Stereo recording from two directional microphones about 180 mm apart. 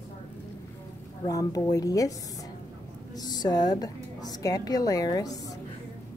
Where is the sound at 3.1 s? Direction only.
20° left (ahead or behind).